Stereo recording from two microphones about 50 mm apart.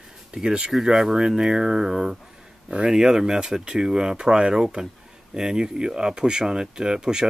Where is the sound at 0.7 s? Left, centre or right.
Centre.